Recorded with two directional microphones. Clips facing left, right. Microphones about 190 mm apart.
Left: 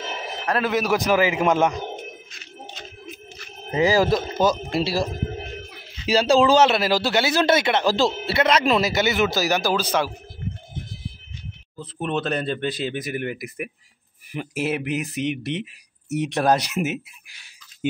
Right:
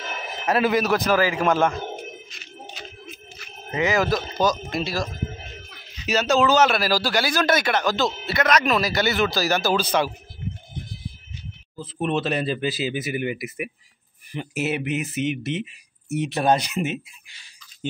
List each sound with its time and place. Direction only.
0.0 s a sound: 30° left (ahead or behind)
0.5 s speech: 5° right (ahead or behind)
0.8 s speech: 15° left (ahead or behind)
3.7 s speech: 30° left (ahead or behind); by 9.8 s 10° left (ahead or behind)
11.8 s speech: 5° right (ahead or behind)